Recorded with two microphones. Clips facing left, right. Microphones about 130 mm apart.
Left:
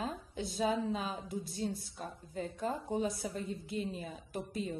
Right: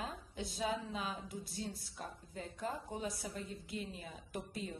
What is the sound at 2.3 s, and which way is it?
Speech, 30° left (ahead or behind).